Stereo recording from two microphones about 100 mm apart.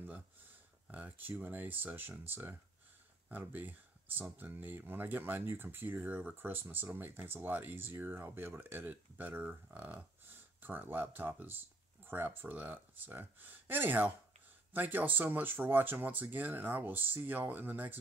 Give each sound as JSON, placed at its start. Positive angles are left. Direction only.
{"t": 0.8, "sound": "speech", "side_deg": -15}